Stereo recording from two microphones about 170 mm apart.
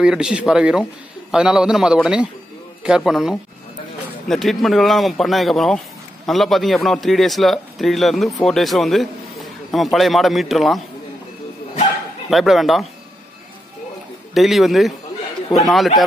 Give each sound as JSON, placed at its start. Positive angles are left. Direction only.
{"t": 0.0, "sound": "a man's voice", "side_deg": -5}
{"t": 12.3, "sound": "speech", "side_deg": 0}
{"t": 14.3, "sound": "speech", "side_deg": 0}